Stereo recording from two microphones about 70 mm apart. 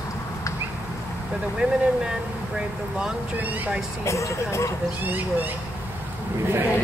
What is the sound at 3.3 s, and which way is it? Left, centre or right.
Speech, right.